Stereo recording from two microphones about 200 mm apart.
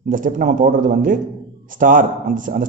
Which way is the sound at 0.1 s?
40° right (ahead or behind).